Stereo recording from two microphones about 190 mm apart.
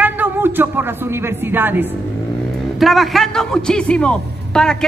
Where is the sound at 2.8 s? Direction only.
Centre (ahead or behind).